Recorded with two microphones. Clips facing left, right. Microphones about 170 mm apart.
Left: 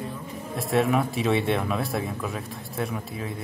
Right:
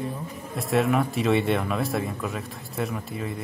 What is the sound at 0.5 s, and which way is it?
Speech, centre (ahead or behind).